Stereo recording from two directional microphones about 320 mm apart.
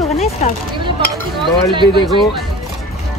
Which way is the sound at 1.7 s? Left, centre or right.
Centre.